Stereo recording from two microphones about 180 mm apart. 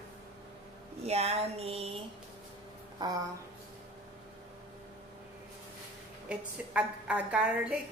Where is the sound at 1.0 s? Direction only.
35° right (ahead or behind).